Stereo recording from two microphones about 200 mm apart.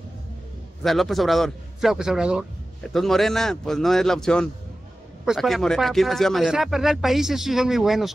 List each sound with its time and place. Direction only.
0.8 s a man's voice: centre (ahead or behind)